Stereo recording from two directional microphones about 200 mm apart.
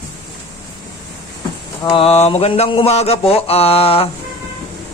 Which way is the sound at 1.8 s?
20° left (ahead or behind).